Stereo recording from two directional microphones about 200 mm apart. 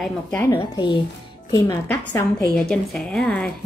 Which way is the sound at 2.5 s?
5° left (ahead or behind).